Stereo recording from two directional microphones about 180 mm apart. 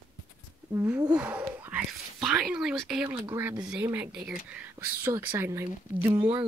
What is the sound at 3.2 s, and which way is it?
Speech, 15° right (ahead or behind).